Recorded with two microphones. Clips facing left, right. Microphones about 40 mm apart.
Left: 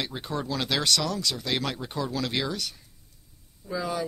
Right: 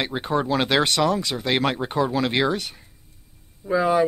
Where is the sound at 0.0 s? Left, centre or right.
Right.